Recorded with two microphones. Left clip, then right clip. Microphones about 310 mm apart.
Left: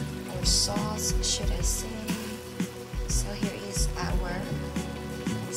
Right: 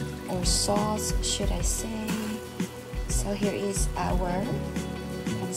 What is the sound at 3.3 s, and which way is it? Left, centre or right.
Speech, centre.